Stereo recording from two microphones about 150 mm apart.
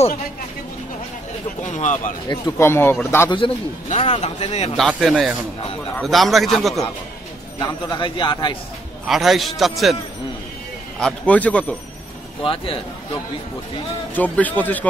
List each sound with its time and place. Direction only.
1.7 s speech: 55° left (ahead or behind)
2.2 s a man's voice: 30° left (ahead or behind)
2.6 s speech: 15° left (ahead or behind)
3.3 s a man's voice: 35° left (ahead or behind)
3.9 s a man's voice: 50° left (ahead or behind)
4.7 s a man's voice: centre (ahead or behind)
7.5 s a man's voice: 30° left (ahead or behind)
9.0 s a man's voice: centre (ahead or behind)
11.0 s speech: 5° left (ahead or behind)
14.1 s speech: 10° left (ahead or behind)